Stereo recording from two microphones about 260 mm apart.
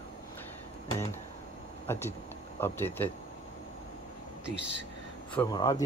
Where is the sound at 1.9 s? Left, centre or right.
Centre.